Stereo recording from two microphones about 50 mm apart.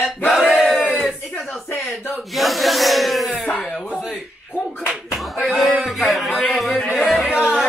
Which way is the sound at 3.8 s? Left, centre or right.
Right.